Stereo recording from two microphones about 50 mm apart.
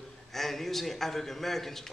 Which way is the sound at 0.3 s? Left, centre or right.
Centre.